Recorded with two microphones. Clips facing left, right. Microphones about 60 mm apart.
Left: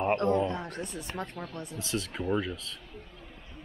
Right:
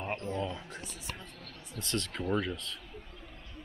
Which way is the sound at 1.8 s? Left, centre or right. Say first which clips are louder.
Left 1 dB; centre.